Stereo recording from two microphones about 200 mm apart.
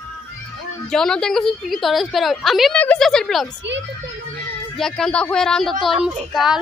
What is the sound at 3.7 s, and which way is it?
Speech, 60° right (ahead or behind).